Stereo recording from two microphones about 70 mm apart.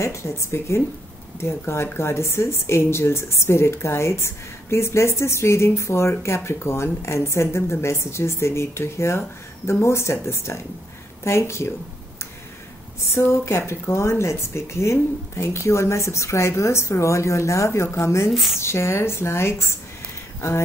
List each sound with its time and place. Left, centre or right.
0.0 s speech: left
13.1 s speech: left
18.3 s speech: centre
18.6 s speech: left